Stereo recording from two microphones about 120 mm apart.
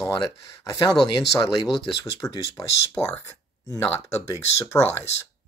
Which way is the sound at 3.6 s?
30° left (ahead or behind).